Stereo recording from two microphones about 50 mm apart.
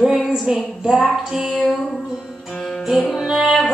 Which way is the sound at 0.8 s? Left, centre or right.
Centre.